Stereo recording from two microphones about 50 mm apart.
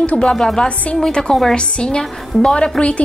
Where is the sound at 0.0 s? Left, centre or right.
Left.